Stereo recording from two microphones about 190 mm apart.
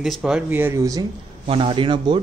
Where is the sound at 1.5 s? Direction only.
30° right (ahead or behind).